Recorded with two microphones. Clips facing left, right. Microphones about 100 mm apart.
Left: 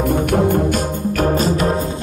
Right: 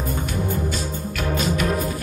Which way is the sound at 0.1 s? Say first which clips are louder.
Left 11 dB; 75° left (ahead or behind).